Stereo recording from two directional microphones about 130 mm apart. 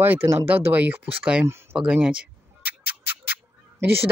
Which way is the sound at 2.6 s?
15° right (ahead or behind).